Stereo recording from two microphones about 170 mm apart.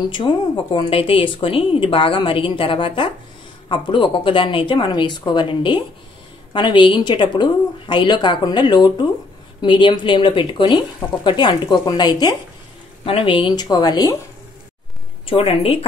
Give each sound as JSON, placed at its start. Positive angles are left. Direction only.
{"t": 0.1, "sound": "speech", "side_deg": 30}
{"t": 15.2, "sound": "speech", "side_deg": 35}